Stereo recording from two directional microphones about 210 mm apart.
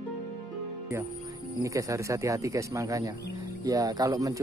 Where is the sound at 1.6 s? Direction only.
15° right (ahead or behind).